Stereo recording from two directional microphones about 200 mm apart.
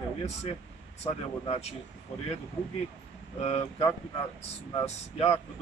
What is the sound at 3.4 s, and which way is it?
Speech, 30° left (ahead or behind).